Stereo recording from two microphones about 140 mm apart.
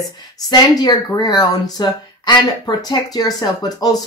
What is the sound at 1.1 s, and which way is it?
Speech, 30° left (ahead or behind).